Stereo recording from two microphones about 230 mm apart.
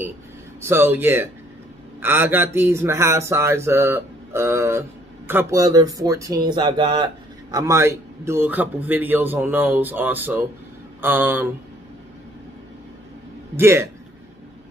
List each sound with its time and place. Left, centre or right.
0.7 s speech: centre
13.6 s speech: centre